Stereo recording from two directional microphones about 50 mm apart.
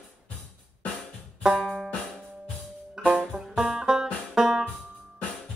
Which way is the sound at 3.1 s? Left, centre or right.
Centre.